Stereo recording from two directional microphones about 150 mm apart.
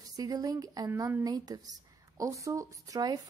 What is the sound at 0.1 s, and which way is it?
A woman's voice, 25° right (ahead or behind).